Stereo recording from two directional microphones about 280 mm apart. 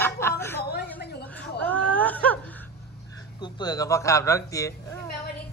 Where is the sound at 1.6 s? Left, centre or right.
Centre.